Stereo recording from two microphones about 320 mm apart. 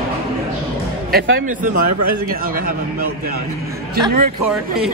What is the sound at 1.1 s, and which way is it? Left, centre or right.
Speech, right.